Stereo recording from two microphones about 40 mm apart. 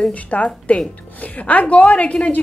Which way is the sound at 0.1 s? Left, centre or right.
Left.